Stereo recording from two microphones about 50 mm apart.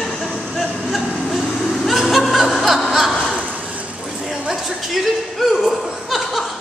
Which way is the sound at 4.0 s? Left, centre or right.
Centre.